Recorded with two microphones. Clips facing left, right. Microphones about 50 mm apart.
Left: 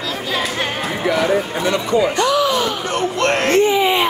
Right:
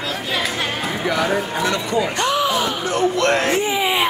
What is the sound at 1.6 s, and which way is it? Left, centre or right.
Speech, left.